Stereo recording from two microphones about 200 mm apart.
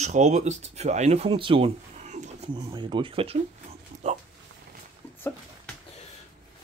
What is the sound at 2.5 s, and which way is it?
Speech, 25° right (ahead or behind).